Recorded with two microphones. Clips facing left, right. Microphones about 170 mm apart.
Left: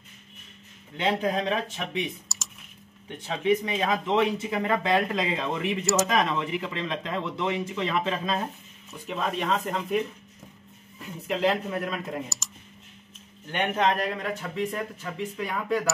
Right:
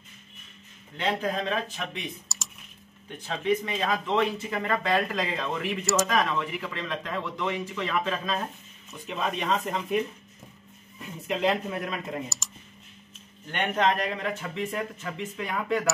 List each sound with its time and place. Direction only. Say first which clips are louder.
0.9 s speech: left 2 dB; 15° left (ahead or behind)
2.2 s computer keyboard: even; centre (ahead or behind)
3.1 s speech: left 2 dB; 20° left (ahead or behind)
8.9 s speech: left 1 dB; centre (ahead or behind)
13.5 s speech: even; 10° left (ahead or behind)